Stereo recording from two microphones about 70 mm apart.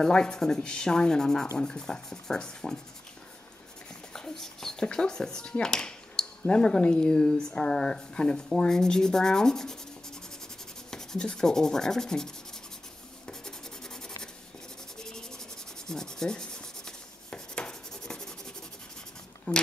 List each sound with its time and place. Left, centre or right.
0.0 s speech: centre
4.1 s speech: centre
10.9 s rub: centre
13.3 s rub: centre
15.0 s sanding: centre
15.9 s rub: centre
19.5 s speech: centre